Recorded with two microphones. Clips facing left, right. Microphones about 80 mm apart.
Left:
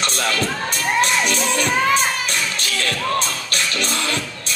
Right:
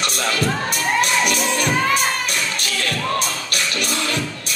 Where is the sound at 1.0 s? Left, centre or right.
Left.